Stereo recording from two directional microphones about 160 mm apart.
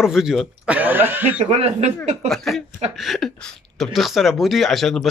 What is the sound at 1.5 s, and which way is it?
Speech, 40° right (ahead or behind).